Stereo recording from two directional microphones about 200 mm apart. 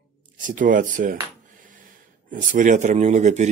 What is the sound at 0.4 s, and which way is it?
Speech, 40° right (ahead or behind).